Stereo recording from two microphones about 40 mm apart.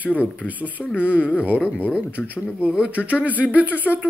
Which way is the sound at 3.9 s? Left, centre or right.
Centre.